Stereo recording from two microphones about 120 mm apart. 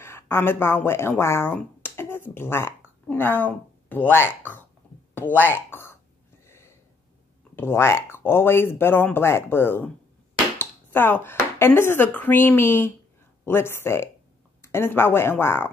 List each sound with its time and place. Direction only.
0.0 s speech: 20° left (ahead or behind)
7.5 s speech: 20° left (ahead or behind)